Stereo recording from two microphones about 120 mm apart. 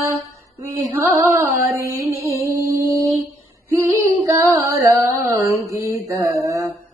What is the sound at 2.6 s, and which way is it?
Music, 25° right (ahead or behind).